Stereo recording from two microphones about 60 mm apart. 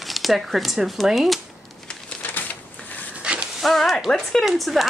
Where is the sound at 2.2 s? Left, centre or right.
Left.